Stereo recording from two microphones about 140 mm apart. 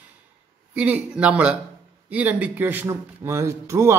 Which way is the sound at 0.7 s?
10° right (ahead or behind).